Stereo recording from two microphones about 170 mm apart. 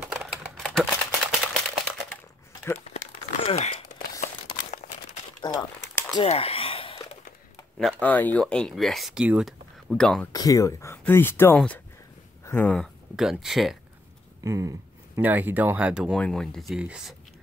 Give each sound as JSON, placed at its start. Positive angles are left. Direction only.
{"t": 0.0, "sound": "typewriter", "side_deg": 0}
{"t": 3.3, "sound": "a sound", "side_deg": 35}
{"t": 5.4, "sound": "crumpling", "side_deg": 25}
{"t": 6.2, "sound": "a sound", "side_deg": 35}
{"t": 7.8, "sound": "speech", "side_deg": 10}
{"t": 10.3, "sound": "speech", "side_deg": 20}
{"t": 14.4, "sound": "speech", "side_deg": -20}